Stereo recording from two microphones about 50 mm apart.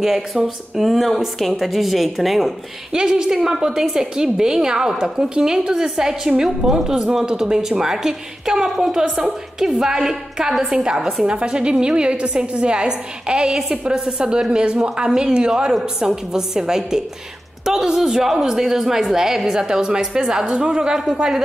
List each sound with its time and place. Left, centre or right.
0.0 s a woman's voice: centre